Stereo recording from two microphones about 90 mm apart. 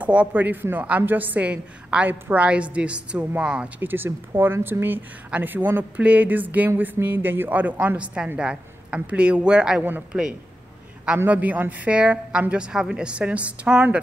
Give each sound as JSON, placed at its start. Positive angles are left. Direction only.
{"t": 0.0, "sound": "a woman's voice", "side_deg": -15}
{"t": 11.1, "sound": "a woman's voice", "side_deg": -20}